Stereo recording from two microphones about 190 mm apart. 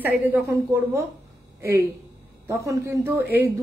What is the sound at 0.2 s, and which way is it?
Speech, 10° right (ahead or behind).